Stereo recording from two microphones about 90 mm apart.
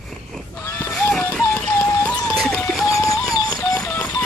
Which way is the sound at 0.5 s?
25° left (ahead or behind).